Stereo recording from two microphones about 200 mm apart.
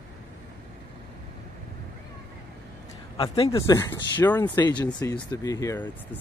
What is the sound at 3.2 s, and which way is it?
Speech, 15° left (ahead or behind).